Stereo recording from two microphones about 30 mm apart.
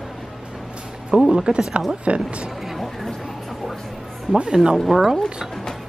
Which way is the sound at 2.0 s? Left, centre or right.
Right.